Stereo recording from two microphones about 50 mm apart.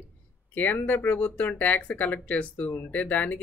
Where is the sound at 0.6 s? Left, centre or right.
Left.